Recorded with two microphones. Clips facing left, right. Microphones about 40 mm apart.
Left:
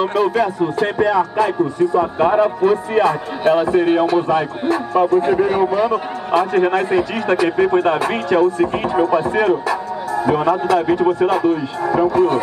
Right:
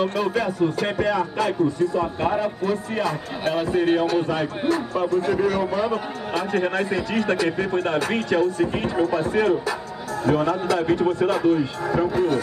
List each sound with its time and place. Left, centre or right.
0.0 s a man's voice: centre
4.6 s a man's voice: left
5.9 s a man's voice: centre